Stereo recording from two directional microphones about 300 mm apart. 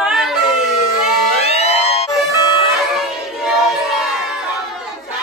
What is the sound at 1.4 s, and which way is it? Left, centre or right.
Music, left.